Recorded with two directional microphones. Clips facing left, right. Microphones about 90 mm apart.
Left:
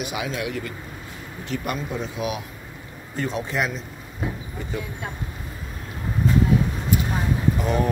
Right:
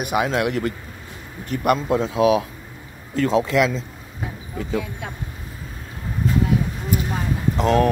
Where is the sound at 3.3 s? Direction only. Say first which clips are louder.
Right 9 dB; 90° right.